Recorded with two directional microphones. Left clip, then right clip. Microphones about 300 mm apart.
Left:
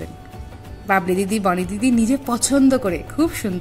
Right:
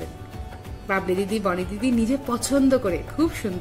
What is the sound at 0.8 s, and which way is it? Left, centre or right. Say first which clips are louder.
A woman's voice: left 5 dB; left.